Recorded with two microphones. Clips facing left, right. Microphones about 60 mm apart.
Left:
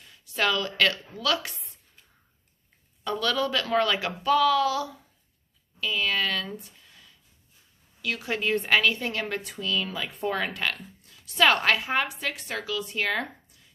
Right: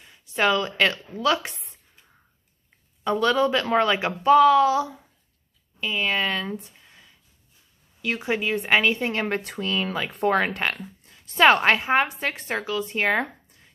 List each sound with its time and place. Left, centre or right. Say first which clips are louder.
0.0 s a woman's voice: right 4 dB; right
3.0 s speech: right 6 dB; right
8.4 s a woman's voice: even; centre
8.6 s speech: right 4 dB; right
9.4 s a woman's voice: right 3 dB; right